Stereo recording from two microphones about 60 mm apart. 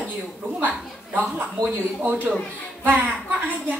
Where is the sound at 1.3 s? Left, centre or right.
Right.